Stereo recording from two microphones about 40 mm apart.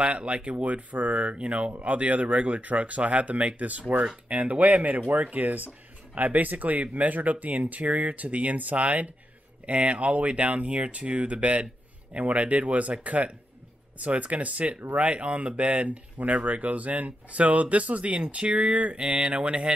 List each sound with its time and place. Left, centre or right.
0.0 s speech: right